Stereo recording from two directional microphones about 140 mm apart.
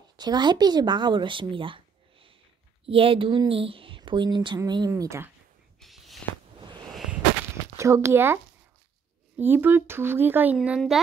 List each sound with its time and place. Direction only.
0.2 s a woman's voice: 30° right (ahead or behind)
5.8 s a sound: centre (ahead or behind)
7.7 s speech: 20° right (ahead or behind)
9.4 s speech: 15° right (ahead or behind)